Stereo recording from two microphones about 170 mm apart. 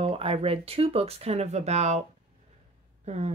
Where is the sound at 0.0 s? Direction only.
35° right (ahead or behind).